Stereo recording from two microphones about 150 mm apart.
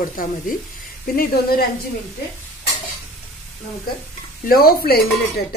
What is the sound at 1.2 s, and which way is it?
Speech, 80° left.